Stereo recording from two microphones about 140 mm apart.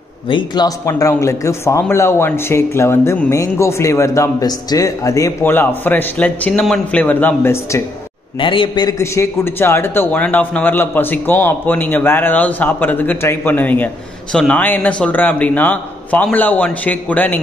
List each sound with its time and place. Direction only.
0.3 s a man's voice: 35° left (ahead or behind)
0.7 s speech: 20° left (ahead or behind)
8.4 s a man's voice: 35° left (ahead or behind); by 17.4 s 10° left (ahead or behind)